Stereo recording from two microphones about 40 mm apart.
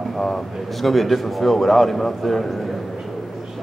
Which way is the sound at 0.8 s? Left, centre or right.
Centre.